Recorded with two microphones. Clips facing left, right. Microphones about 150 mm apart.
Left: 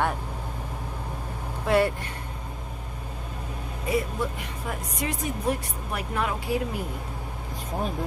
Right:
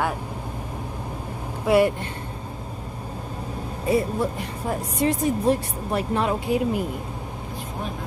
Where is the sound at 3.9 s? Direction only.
30° right (ahead or behind).